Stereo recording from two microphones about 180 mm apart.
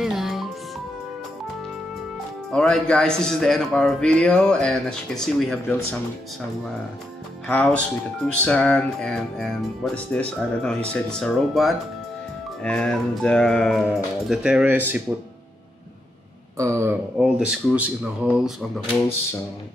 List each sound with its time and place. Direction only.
0.0 s music: centre (ahead or behind)
2.5 s speech: 5° left (ahead or behind)
7.4 s speech: 10° left (ahead or behind); by 15.0 s 10° right (ahead or behind)
16.5 s speech: 15° right (ahead or behind)